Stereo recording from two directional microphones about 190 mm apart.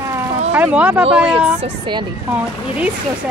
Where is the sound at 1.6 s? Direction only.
25° right (ahead or behind).